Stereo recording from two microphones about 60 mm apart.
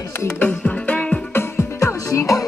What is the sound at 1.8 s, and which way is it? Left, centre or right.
Music, left.